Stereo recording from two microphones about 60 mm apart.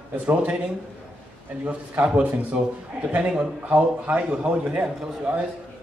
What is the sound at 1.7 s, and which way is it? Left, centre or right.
A man's voice, right.